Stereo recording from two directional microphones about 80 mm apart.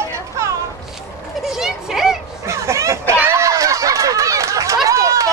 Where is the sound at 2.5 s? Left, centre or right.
Right.